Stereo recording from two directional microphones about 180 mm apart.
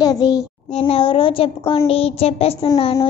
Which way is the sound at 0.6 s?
35° left (ahead or behind).